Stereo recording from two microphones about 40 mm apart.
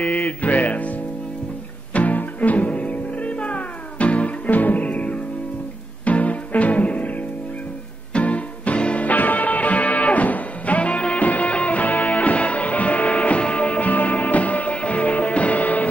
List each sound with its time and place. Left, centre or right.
0.0 s music: left
2.0 s music: left
8.1 s music: left
9.0 s music: left